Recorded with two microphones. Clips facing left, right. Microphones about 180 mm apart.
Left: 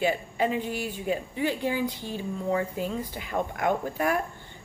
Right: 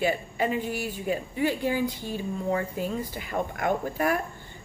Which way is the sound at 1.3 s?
45° right (ahead or behind).